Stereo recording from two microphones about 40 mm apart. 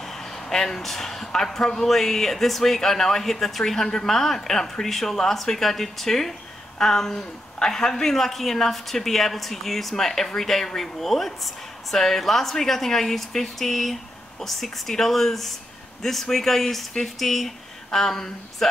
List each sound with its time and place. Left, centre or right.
0.0 s speech: centre